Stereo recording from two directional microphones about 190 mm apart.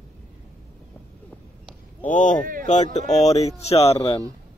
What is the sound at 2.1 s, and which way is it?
Speech, 40° left (ahead or behind).